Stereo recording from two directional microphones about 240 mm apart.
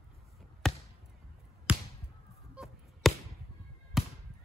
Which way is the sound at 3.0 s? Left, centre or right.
Centre.